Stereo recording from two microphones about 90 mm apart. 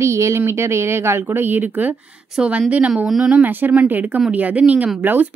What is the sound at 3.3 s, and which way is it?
A woman's voice, 20° right (ahead or behind).